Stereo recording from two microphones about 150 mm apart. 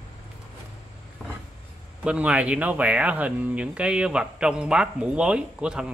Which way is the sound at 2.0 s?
10° right (ahead or behind).